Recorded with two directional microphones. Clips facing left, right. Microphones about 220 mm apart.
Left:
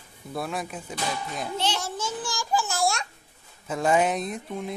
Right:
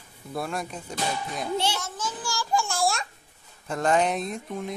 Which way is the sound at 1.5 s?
10° right (ahead or behind).